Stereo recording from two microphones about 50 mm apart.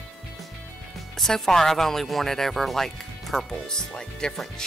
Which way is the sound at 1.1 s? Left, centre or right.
Centre.